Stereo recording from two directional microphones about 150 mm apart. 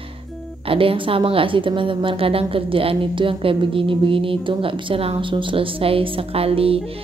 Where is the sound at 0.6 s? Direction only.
35° right (ahead or behind).